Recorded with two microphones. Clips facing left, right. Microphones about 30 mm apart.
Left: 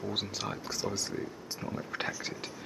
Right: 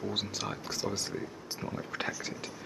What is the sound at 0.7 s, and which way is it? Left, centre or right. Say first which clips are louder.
Speech: even; centre.